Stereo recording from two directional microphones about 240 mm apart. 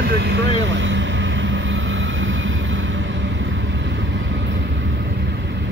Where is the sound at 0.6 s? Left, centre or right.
Right.